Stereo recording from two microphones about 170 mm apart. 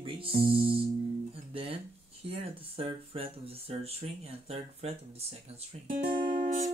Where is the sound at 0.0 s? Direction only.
30° right (ahead or behind).